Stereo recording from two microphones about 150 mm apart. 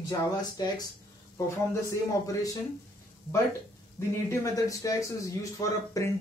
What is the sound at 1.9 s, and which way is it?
Speech, 20° left (ahead or behind).